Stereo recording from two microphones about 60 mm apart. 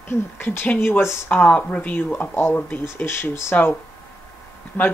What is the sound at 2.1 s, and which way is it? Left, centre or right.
Speech, left.